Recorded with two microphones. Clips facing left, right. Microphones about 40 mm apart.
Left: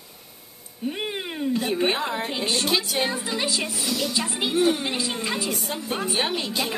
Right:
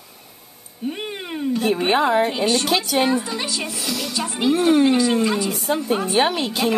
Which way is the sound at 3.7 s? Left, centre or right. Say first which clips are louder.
Even; right.